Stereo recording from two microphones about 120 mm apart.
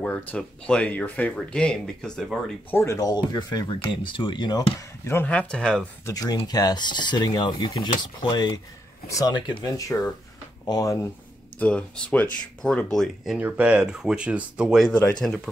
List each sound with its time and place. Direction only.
0.0 s speech: 10° left (ahead or behind)
2.7 s speech: 25° left (ahead or behind)
4.7 s speech: 20° left (ahead or behind)
6.0 s speech: 30° left (ahead or behind)
11.5 s speech: 10° left (ahead or behind)
13.4 s speech: 15° right (ahead or behind)
14.9 s speech: 10° left (ahead or behind)